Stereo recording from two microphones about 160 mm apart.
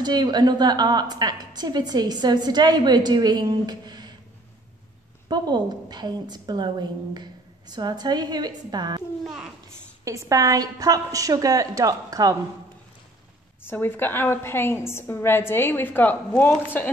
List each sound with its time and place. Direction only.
0.0 s a woman's voice: 25° right (ahead or behind)
5.3 s a woman's voice: 25° right (ahead or behind)
9.2 s a child's voice: centre (ahead or behind)
10.0 s a woman's voice: 20° right (ahead or behind)
13.7 s a woman's voice: 15° left (ahead or behind)